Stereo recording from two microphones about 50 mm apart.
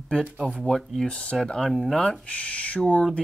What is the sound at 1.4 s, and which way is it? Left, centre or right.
Speech, centre.